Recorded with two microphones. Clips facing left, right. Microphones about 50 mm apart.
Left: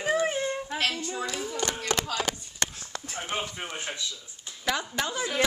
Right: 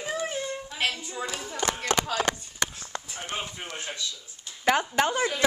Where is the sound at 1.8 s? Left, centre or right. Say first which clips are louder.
Right 2 dB; right.